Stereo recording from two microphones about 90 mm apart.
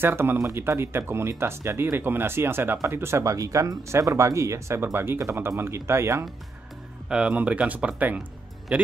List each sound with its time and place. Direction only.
0.0 s speech: 25° right (ahead or behind)
7.1 s speech: 10° right (ahead or behind)